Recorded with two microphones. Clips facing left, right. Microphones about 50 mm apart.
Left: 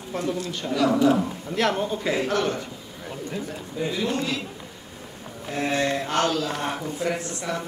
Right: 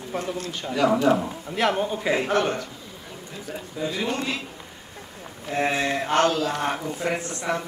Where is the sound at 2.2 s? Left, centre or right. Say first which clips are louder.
Right 1 dB; right.